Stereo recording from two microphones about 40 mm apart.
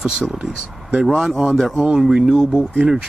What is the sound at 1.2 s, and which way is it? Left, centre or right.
Speech, centre.